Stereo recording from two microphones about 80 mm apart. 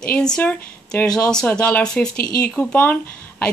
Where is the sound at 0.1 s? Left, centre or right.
Centre.